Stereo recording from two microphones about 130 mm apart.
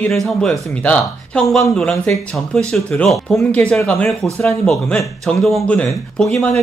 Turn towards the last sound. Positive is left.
turn(degrees=5)  # may be behind; listen again after turning